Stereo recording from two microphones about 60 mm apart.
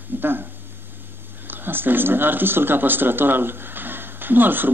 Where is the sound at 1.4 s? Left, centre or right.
Right.